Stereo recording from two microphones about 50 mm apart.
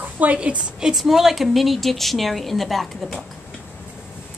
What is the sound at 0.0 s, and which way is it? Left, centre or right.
Speech, right.